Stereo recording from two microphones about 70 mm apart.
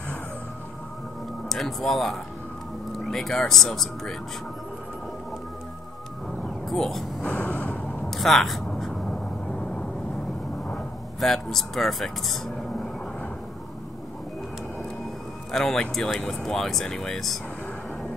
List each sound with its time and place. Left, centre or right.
1.5 s speech: centre
6.7 s speech: centre
7.2 s vehicle: centre
8.1 s a sound: centre
11.1 s speech: centre
15.5 s speech: centre